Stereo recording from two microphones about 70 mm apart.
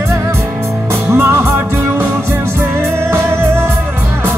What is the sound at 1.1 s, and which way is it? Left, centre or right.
Music, right.